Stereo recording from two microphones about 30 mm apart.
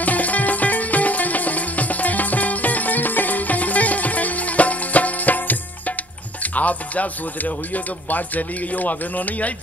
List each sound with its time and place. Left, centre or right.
0.0 s music: left
6.4 s speech: left